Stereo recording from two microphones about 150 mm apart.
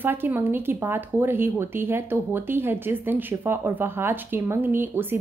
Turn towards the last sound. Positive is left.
turn(degrees=-15)  # may be behind; listen again after turning